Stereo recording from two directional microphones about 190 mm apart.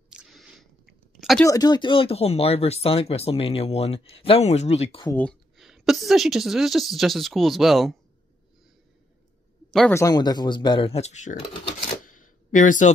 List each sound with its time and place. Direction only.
0.1 s squish: centre (ahead or behind)
1.4 s speech: 20° left (ahead or behind); by 5.0 s 35° left (ahead or behind)
5.0 s a woman's voice: 10° left (ahead or behind)
9.7 s a man's voice: 5° left (ahead or behind)
9.9 s speech: 20° left (ahead or behind); by 12.9 s 40° left (ahead or behind)